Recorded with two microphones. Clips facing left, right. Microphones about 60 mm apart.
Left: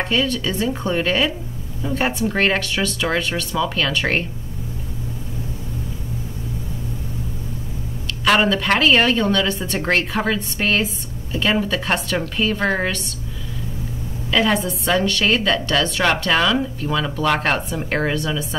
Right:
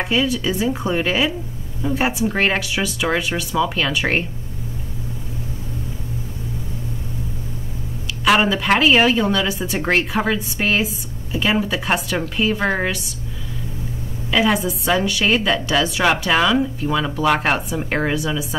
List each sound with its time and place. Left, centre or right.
0.0 s a woman's voice: centre
8.3 s a woman's voice: centre
14.3 s a woman's voice: centre